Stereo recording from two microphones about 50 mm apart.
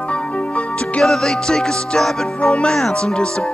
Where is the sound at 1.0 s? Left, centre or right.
Centre.